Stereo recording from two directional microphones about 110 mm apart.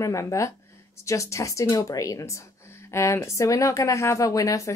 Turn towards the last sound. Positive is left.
turn(degrees=30)  # may be behind; listen again after turning